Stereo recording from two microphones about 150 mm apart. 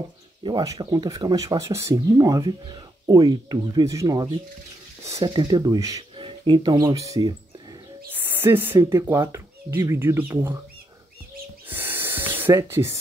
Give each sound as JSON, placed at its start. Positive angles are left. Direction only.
{"t": 0.4, "sound": "speech", "side_deg": -30}
{"t": 8.1, "sound": "speech", "side_deg": -15}
{"t": 11.7, "sound": "spray", "side_deg": -15}